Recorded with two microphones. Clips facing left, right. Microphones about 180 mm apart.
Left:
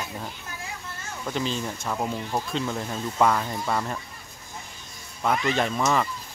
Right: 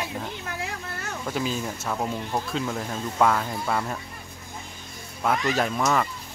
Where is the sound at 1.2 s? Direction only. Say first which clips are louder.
Even; 5° right (ahead or behind).